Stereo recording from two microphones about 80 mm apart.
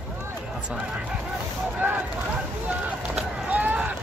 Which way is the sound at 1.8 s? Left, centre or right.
Right.